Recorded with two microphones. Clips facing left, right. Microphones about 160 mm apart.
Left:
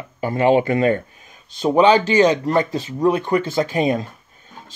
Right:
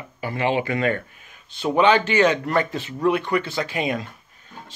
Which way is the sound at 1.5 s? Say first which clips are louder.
Left 4 dB; 40° left (ahead or behind).